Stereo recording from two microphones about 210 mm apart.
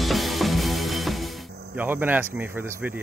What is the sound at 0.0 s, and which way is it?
Music, centre (ahead or behind).